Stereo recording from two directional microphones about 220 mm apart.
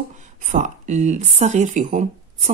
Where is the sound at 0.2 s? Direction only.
35° right (ahead or behind).